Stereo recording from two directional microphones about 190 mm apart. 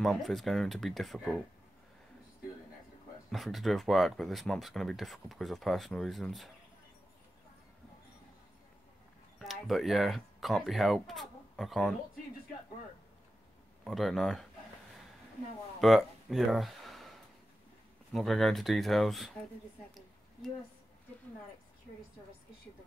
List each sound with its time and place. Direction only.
0.0 s speech: centre (ahead or behind)
3.3 s speech: centre (ahead or behind)
9.4 s speech: centre (ahead or behind)
13.8 s speech: centre (ahead or behind)
15.8 s speech: centre (ahead or behind)
18.1 s speech: centre (ahead or behind)